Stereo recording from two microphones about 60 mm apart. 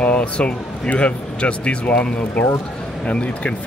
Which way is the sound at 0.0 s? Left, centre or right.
Left.